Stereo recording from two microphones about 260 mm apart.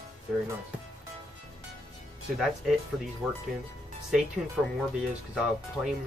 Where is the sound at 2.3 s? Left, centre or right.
Centre.